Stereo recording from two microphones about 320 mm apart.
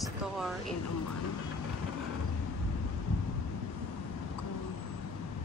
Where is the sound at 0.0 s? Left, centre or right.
Centre.